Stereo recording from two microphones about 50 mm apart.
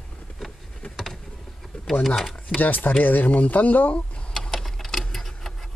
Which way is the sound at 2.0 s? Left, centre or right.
Centre.